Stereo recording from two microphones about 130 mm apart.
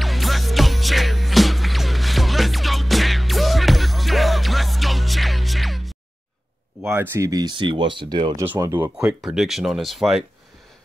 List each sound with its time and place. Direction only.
0.0 s music: centre (ahead or behind)
6.8 s speech: 15° right (ahead or behind)
7.2 s speech: 30° right (ahead or behind)
8.5 s speech: 20° right (ahead or behind)
8.9 s speech: 5° right (ahead or behind)